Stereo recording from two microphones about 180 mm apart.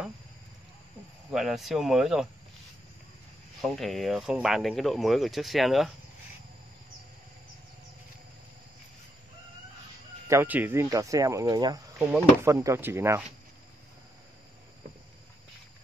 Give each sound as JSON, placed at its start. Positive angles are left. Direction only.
{"t": 1.3, "sound": "speech", "side_deg": 0}
{"t": 3.6, "sound": "speech", "side_deg": 0}
{"t": 10.2, "sound": "speech", "side_deg": -15}